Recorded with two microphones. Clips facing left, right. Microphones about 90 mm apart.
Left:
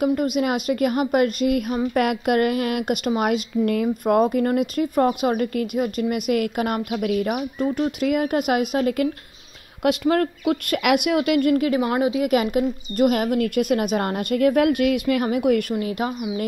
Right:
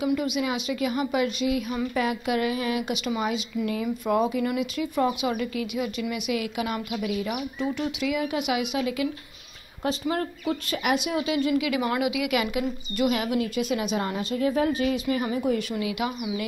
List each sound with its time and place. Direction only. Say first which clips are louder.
0.0 s speech: left 5 dB; 45° left (ahead or behind)
9.8 s speech: left 7 dB; 60° left (ahead or behind)
11.8 s speech: left 5 dB; 35° left (ahead or behind); by 15.6 s 65° left (ahead or behind)
15.8 s a woman's voice: left 3 dB; 40° left (ahead or behind)